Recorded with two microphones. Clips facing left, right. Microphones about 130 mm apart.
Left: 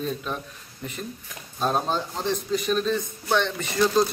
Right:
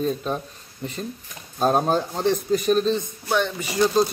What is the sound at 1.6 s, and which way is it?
A man's voice, 45° right (ahead or behind).